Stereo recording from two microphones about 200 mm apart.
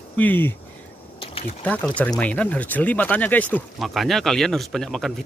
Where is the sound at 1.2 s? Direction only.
30° left (ahead or behind).